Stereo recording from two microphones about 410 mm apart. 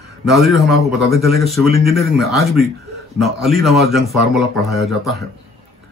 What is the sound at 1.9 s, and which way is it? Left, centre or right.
A man's voice, centre.